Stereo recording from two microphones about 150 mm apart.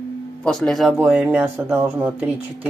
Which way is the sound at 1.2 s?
10° right (ahead or behind).